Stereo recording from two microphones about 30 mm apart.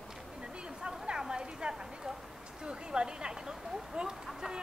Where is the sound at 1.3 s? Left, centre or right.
Right.